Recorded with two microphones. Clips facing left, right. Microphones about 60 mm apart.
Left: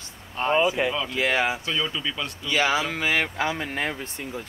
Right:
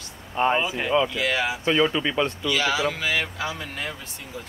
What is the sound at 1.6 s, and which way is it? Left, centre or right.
Speech, right.